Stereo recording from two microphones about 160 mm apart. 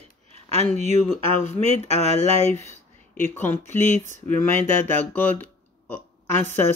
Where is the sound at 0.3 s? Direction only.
40° right (ahead or behind).